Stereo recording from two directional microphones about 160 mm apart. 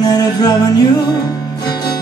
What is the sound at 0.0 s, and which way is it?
Music, 25° left (ahead or behind).